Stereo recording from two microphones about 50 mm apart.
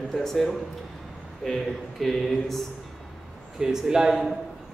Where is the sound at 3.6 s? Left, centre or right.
Centre.